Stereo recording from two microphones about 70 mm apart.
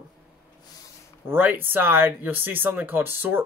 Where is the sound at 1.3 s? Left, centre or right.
Right.